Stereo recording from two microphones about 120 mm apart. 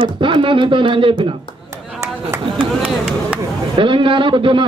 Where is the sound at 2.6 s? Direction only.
5° right (ahead or behind).